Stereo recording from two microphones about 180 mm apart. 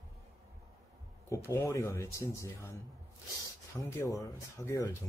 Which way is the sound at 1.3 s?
20° left (ahead or behind).